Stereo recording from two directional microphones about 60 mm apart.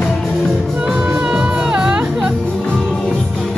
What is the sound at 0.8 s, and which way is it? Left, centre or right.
Music, centre.